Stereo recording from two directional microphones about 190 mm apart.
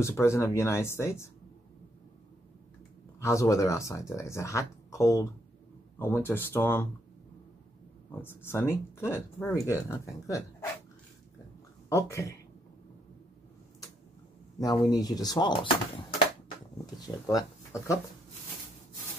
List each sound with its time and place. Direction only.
0.0 s speech: 15° left (ahead or behind)
3.2 s speech: 15° left (ahead or behind)
8.2 s speech: 10° left (ahead or behind)
11.9 s speech: 15° left (ahead or behind)
14.6 s speech: 20° left (ahead or behind)
17.3 s speech: 20° left (ahead or behind)